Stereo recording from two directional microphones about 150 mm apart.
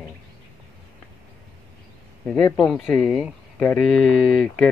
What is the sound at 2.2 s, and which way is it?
Speech, 5° left (ahead or behind).